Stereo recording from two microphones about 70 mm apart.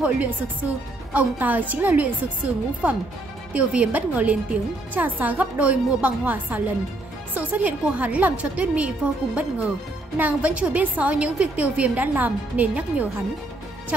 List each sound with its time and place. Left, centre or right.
0.0 s a woman's voice: right